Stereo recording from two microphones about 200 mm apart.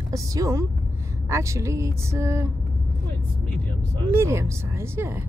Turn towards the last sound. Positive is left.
turn(degrees=-10)  # may be behind; listen again after turning